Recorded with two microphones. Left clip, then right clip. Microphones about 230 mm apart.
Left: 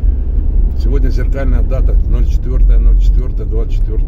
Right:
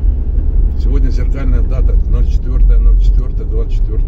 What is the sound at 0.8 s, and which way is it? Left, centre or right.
Vehicle, left.